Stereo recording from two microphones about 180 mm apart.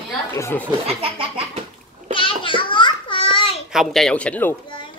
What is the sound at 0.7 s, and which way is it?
Speech, 30° right (ahead or behind).